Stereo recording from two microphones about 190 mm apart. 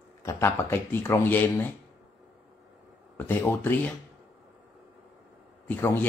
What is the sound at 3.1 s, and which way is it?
Speech, 10° left (ahead or behind).